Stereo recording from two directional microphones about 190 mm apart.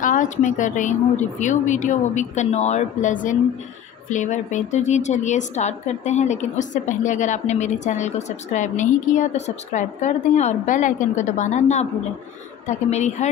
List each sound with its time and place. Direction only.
0.0 s a woman's voice: 45° left (ahead or behind)